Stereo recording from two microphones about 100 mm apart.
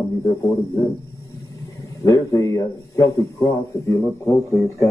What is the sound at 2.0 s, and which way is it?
A man's voice, 35° left (ahead or behind).